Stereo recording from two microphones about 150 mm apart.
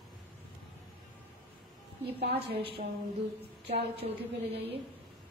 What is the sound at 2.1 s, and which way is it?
Speech, 90° right.